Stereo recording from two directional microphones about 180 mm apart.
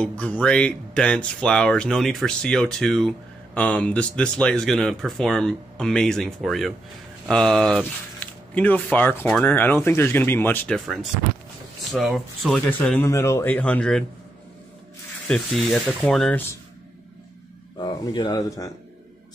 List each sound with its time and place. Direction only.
0.0 s speech: 5° left (ahead or behind)
15.2 s speech: centre (ahead or behind)
17.7 s speech: 25° left (ahead or behind)